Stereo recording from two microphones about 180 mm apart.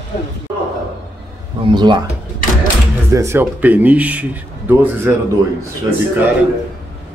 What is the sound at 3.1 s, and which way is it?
Speech, 15° right (ahead or behind).